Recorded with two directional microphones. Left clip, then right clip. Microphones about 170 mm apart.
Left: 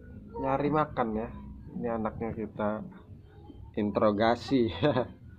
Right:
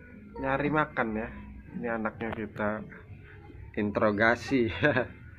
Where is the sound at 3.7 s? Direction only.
15° left (ahead or behind).